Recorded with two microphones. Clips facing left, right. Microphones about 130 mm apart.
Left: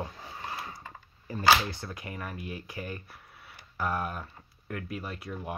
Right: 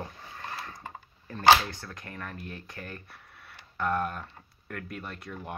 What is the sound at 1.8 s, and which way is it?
Speech, 10° left (ahead or behind).